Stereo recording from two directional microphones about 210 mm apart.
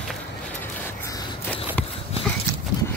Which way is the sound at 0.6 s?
10° left (ahead or behind).